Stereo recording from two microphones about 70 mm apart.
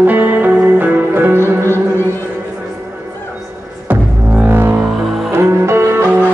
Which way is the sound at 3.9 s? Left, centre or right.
Right.